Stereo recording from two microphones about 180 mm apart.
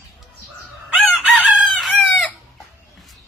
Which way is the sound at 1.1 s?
Centre (ahead or behind).